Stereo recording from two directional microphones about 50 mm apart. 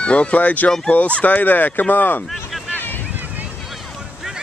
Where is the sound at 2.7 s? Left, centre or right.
Left.